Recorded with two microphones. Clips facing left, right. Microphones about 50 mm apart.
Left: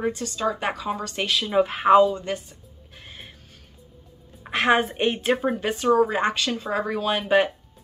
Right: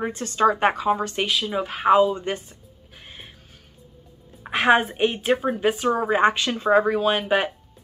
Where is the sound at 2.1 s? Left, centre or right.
Right.